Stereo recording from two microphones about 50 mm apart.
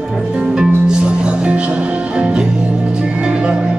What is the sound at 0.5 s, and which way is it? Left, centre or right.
Music, centre.